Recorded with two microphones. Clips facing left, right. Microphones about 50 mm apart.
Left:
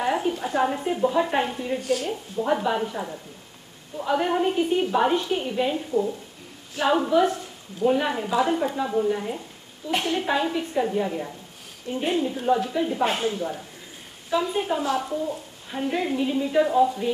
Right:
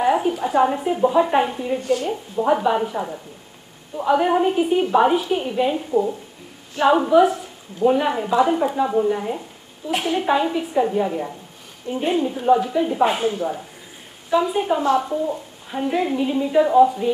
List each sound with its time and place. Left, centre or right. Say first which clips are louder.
0.0 s a woman's voice: right 5 dB; centre